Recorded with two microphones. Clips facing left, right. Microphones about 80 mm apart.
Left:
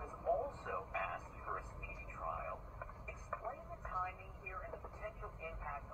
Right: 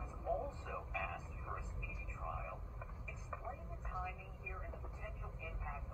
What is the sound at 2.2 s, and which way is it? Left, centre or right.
Radio, centre.